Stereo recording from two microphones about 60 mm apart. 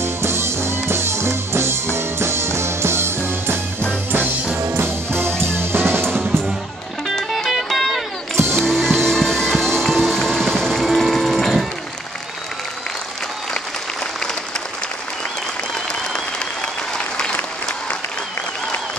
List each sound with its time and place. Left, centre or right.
0.0 s music: right
4.6 s music: right
7.2 s music: centre